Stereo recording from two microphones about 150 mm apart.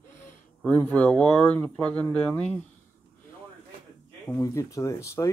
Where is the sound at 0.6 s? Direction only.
10° left (ahead or behind).